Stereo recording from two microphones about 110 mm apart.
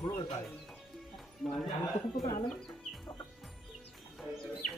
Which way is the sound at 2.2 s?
55° left (ahead or behind).